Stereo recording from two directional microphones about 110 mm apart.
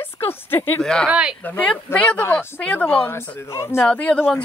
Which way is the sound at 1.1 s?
10° right (ahead or behind).